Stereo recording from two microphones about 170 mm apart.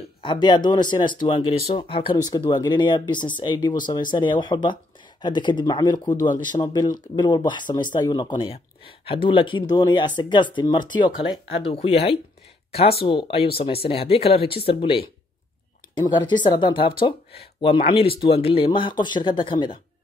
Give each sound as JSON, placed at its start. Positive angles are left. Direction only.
{"t": 0.2, "sound": "speech", "side_deg": 25}
{"t": 13.0, "sound": "speech", "side_deg": 30}
{"t": 16.1, "sound": "speech", "side_deg": 25}